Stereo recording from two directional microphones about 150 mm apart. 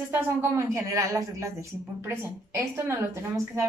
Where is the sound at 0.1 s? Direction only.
20° right (ahead or behind).